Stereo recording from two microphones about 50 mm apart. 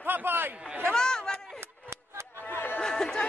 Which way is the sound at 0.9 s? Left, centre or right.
Centre.